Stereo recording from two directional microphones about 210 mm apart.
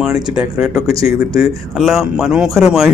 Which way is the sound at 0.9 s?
15° right (ahead or behind).